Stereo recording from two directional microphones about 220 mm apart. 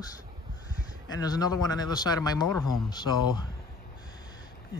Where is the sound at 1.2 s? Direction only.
15° left (ahead or behind).